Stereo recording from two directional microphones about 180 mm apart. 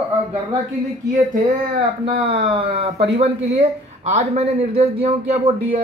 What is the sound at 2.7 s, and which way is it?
Speech, 35° right (ahead or behind).